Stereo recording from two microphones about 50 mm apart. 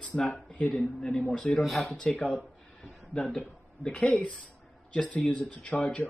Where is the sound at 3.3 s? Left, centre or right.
Centre.